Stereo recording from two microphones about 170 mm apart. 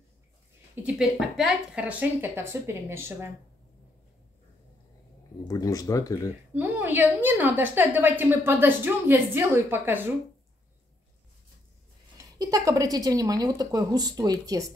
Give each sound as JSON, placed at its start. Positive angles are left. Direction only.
{"t": 0.8, "sound": "a woman's voice", "side_deg": -5}
{"t": 5.4, "sound": "speech", "side_deg": 20}
{"t": 6.5, "sound": "a woman's voice", "side_deg": -10}
{"t": 12.4, "sound": "speech", "side_deg": -20}